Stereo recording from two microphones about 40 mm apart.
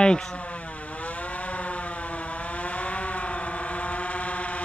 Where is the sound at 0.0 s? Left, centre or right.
Left.